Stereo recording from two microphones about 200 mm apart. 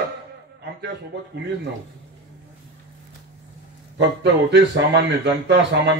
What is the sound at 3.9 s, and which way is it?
Speech, 60° right (ahead or behind).